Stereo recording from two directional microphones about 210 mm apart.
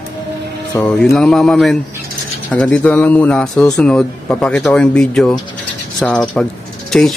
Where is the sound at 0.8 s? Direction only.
5° left (ahead or behind).